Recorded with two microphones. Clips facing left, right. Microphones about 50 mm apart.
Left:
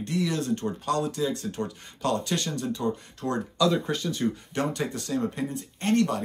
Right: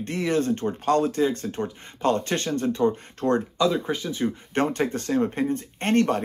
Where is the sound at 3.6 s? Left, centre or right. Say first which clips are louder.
Right 1 dB; centre.